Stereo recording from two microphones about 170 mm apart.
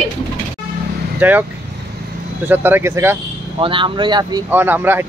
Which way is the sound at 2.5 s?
10° right (ahead or behind).